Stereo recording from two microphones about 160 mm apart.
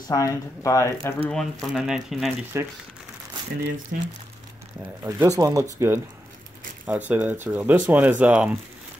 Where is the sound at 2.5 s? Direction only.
15° right (ahead or behind).